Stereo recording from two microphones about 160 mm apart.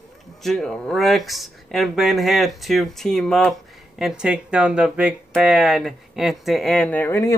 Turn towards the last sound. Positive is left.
turn(degrees=20)  # may be behind; listen again after turning